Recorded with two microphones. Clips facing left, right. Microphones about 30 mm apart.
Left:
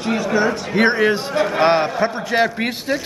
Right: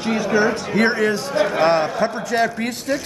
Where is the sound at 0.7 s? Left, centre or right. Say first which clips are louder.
Left 3 dB; left.